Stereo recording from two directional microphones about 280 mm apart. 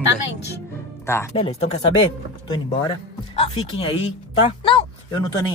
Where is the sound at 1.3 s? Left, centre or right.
Left.